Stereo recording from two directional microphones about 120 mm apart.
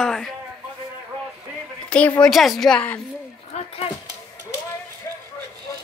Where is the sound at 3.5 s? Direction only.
70° left (ahead or behind).